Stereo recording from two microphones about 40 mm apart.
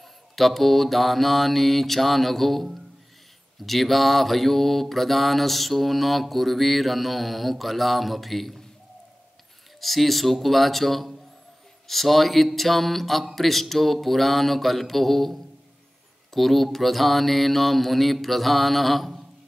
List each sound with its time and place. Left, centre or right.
0.4 s mantra: centre
9.8 s mantra: centre
16.3 s mantra: centre